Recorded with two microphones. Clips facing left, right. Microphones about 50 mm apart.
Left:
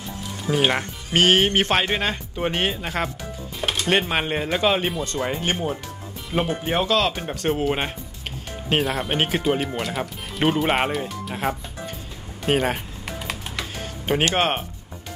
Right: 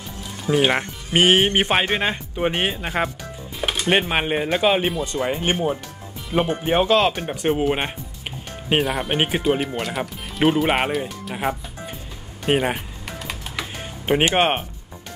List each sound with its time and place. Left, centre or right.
0.7 s speech: centre
7.2 s speech: centre
13.6 s music: centre